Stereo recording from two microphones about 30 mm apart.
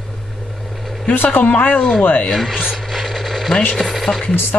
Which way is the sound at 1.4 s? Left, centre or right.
Left.